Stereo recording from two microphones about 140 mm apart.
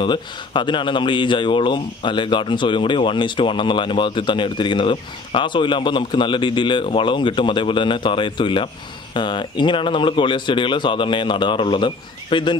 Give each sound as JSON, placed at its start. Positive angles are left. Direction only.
{"t": 0.0, "sound": "speech", "side_deg": 35}